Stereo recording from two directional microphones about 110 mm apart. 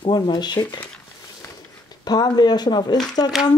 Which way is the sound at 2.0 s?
40° left (ahead or behind).